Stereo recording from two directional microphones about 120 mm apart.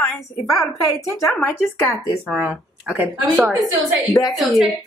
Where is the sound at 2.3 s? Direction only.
5° right (ahead or behind).